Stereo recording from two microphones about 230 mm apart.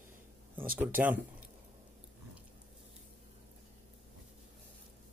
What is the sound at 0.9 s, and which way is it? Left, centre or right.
Speech, centre.